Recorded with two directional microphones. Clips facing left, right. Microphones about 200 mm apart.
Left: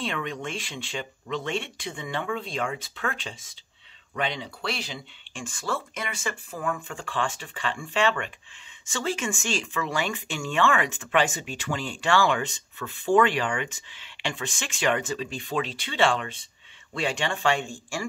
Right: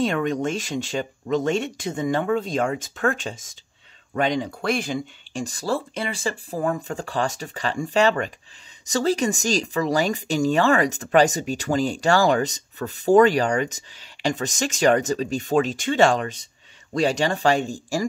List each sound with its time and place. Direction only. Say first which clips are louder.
0.0 s speech: right 9 dB; 45° right (ahead or behind)